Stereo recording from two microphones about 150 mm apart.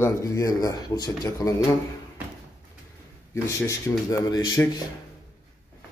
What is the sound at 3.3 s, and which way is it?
A man's voice, 20° left (ahead or behind).